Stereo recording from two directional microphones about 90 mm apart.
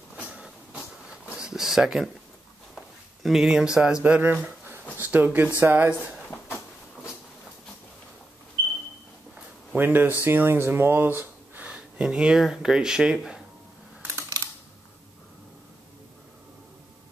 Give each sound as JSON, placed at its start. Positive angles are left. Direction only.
{"t": 1.3, "sound": "speech", "side_deg": -5}
{"t": 9.8, "sound": "speech", "side_deg": -20}